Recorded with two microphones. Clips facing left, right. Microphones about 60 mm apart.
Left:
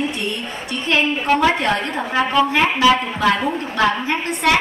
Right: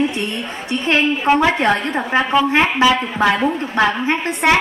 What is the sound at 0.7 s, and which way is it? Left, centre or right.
A woman's voice, right.